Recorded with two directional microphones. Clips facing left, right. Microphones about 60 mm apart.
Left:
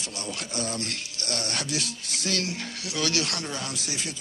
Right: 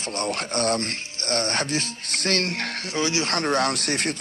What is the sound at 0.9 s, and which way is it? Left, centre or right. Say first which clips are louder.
Speech: right 6 dB; right.